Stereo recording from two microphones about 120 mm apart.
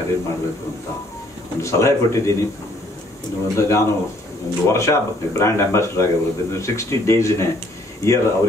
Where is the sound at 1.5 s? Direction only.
25° left (ahead or behind).